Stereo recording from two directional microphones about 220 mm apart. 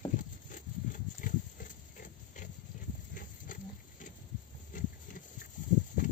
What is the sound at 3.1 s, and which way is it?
Patter, 35° left (ahead or behind).